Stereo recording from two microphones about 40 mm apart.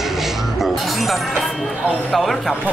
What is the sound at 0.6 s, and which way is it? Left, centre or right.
Music, centre.